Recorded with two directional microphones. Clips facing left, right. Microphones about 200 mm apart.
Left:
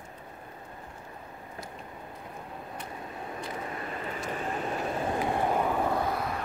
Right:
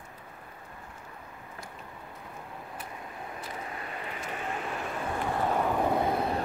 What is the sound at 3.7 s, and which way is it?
Vehicle, 35° left (ahead or behind).